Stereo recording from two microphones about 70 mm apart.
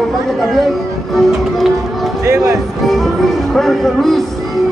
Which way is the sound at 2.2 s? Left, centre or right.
Right.